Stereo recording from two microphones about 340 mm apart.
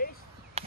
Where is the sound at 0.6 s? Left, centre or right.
Centre.